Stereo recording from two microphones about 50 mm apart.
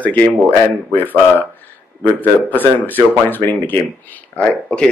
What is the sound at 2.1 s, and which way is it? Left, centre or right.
Speech, left.